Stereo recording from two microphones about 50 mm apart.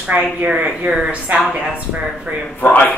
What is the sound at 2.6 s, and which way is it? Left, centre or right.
Speech, left.